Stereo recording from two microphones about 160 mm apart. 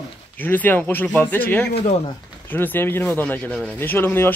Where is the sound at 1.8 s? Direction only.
45° left (ahead or behind).